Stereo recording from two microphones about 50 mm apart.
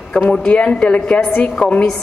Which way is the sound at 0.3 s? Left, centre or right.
Left.